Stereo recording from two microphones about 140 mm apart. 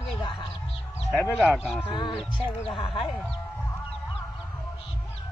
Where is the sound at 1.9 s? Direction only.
35° left (ahead or behind).